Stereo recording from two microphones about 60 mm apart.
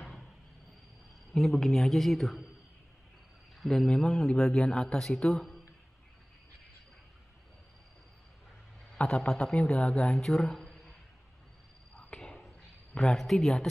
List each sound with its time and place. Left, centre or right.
1.3 s speech: centre
3.6 s a man's voice: centre
8.9 s a man's voice: centre
10.1 s speech: centre
11.9 s a sound: centre